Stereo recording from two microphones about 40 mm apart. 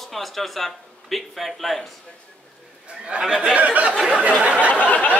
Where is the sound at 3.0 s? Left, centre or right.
Right.